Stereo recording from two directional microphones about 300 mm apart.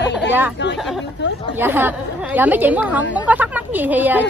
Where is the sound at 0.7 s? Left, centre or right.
Centre.